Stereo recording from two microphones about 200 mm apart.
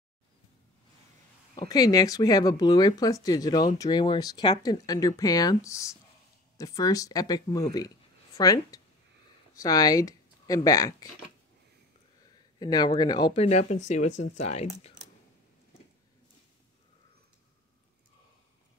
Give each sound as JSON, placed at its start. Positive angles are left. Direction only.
{"t": 1.6, "sound": "speech", "side_deg": 20}
{"t": 12.5, "sound": "speech", "side_deg": 20}
{"t": 13.4, "sound": "speech", "side_deg": 35}